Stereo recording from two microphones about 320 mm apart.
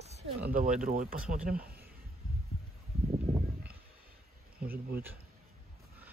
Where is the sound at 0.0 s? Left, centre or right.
Right.